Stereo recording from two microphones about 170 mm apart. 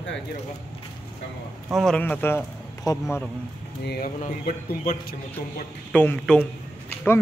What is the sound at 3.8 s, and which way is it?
Speech, 70° left (ahead or behind).